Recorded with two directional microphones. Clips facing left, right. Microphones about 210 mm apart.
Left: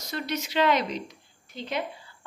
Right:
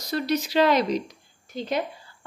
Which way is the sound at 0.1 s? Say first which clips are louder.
Right 6 dB; 35° right (ahead or behind).